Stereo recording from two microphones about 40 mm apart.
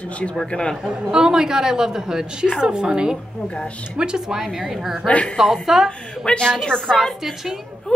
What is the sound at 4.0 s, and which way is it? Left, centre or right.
Speech, right.